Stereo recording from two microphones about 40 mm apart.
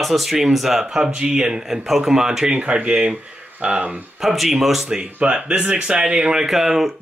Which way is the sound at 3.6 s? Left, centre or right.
Right.